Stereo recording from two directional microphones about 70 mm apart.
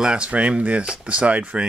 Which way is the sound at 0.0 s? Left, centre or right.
Centre.